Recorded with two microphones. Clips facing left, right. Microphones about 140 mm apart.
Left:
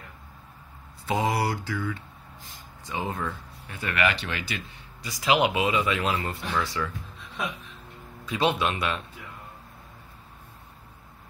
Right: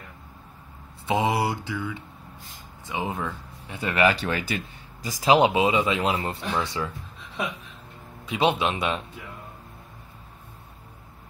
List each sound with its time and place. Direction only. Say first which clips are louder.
1.0 s speech: right 2 dB; 20° right (ahead or behind)
3.8 s speech: right 5 dB; 30° right (ahead or behind)
4.2 s speech: right 6 dB; 45° right (ahead or behind); by 6.9 s 25° right (ahead or behind)
8.3 s a man's voice: right 2 dB; 15° right (ahead or behind)
8.7 s speech: right 2 dB; 30° right (ahead or behind)